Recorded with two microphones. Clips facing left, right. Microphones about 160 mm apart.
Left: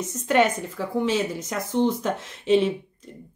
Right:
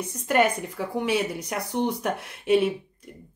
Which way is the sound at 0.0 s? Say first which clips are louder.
Left 2 dB; 10° right (ahead or behind).